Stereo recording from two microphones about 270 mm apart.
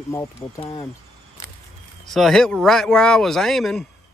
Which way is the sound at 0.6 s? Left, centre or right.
Left.